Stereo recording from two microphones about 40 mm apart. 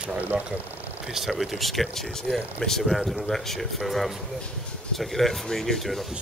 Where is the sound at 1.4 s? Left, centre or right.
Centre.